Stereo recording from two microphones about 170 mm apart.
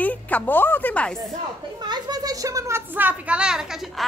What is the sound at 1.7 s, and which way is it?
A child's voice, 25° right (ahead or behind).